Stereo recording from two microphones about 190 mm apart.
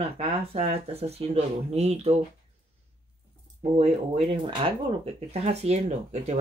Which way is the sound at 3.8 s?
30° right (ahead or behind).